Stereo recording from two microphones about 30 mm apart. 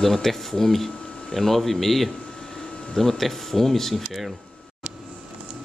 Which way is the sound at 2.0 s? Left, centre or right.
Left.